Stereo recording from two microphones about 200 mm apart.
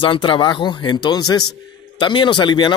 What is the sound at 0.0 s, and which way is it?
Speech, 25° left (ahead or behind).